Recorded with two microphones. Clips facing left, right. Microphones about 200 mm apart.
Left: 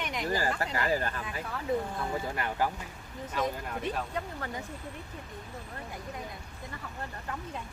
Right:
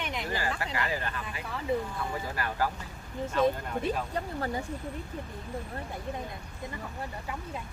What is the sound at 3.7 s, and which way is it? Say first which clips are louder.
Speech: right 3 dB; centre (ahead or behind).